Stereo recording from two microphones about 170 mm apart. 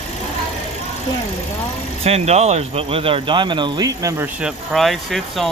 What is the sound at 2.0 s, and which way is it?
Speech, 40° right (ahead or behind).